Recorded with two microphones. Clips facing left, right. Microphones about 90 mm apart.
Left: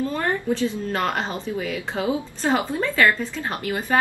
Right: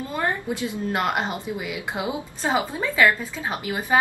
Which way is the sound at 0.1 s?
15° right (ahead or behind).